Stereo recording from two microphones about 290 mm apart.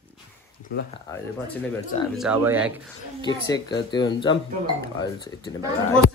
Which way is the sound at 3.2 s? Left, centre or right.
Centre.